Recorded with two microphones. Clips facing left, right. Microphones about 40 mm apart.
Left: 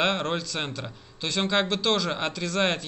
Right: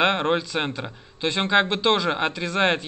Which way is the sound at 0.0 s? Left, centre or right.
Right.